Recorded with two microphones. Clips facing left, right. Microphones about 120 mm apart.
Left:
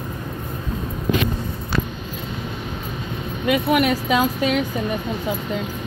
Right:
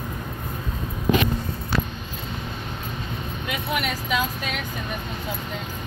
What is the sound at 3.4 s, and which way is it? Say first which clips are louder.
Speech: left 10 dB; 80° left.